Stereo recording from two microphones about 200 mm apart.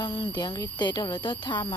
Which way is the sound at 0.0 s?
20° left (ahead or behind).